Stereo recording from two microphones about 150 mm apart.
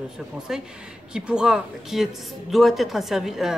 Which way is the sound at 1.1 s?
5° right (ahead or behind).